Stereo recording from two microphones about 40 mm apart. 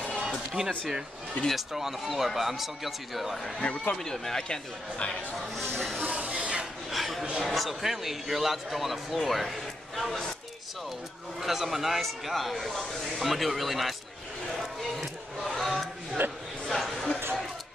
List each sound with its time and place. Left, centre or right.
1.5 s a man's voice: centre
3.6 s speech: left
4.0 s speech: centre
5.8 s speech: centre
6.0 s speech: right
6.3 s a sound: right
6.9 s dishes: centre
7.4 s a man's voice: centre
11.4 s a man's voice: centre
14.6 s a sound: centre
16.2 s speech: right
16.6 s a sound: centre